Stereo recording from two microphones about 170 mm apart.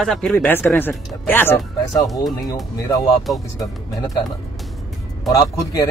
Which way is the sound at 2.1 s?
Centre (ahead or behind).